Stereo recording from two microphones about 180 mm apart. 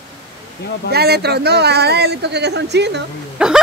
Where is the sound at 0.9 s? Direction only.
65° right (ahead or behind).